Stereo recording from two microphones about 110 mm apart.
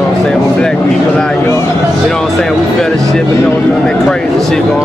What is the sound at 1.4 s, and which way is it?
Speech, 25° left (ahead or behind).